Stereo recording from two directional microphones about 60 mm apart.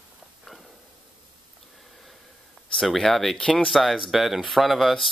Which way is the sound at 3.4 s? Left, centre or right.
Centre.